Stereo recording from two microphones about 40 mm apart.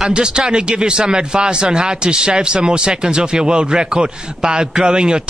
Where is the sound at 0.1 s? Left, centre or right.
Right.